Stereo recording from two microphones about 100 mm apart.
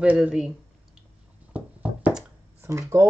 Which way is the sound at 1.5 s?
15° right (ahead or behind).